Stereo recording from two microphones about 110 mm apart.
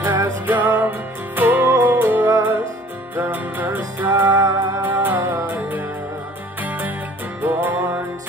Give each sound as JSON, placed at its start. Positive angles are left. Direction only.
{"t": 0.0, "sound": "music", "side_deg": -20}
{"t": 7.4, "sound": "music", "side_deg": -15}